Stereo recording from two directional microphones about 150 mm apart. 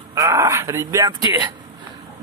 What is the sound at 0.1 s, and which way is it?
Speech, 20° right (ahead or behind).